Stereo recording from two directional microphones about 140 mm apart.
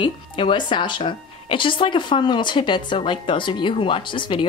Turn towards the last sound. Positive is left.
turn(degrees=35)  # may be behind; listen again after turning